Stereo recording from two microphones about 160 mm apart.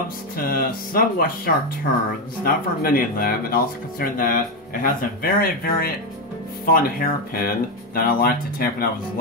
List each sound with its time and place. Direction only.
0.4 s speech: 65° left (ahead or behind)